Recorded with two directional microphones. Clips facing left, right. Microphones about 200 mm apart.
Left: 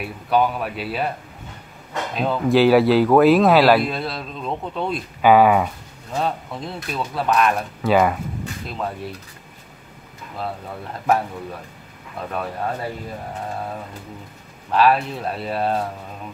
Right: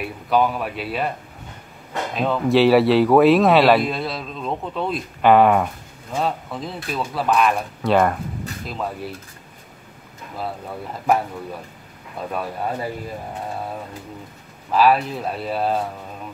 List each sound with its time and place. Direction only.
0.0 s speech: centre (ahead or behind)
2.1 s speech: centre (ahead or behind)
10.3 s speech: 5° right (ahead or behind)
14.7 s speech: centre (ahead or behind)